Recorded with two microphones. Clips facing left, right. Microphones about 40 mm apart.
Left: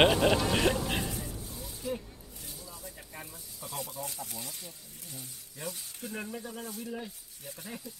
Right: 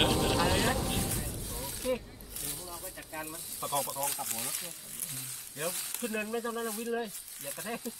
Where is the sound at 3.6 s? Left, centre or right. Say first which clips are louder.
Right 6 dB; right.